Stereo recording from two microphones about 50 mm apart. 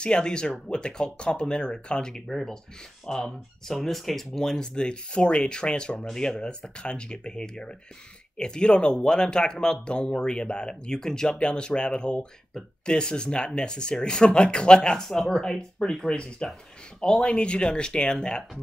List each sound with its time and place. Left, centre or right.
0.0 s speech: centre